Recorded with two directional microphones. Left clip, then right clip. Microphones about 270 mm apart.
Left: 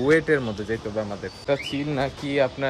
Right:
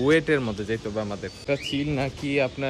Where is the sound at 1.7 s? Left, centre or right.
Centre.